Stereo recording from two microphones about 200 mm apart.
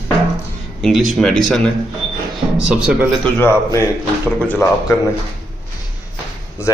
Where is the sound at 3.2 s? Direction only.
10° left (ahead or behind).